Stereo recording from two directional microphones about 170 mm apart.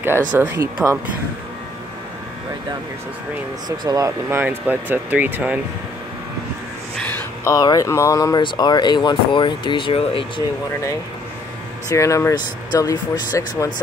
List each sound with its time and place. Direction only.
0.4 s speech: 15° right (ahead or behind)
3.6 s speech: 25° right (ahead or behind); by 5.6 s 10° right (ahead or behind)
7.0 s speech: 20° left (ahead or behind)
11.9 s speech: 15° left (ahead or behind)